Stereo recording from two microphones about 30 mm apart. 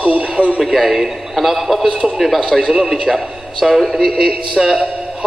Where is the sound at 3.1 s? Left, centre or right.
Centre.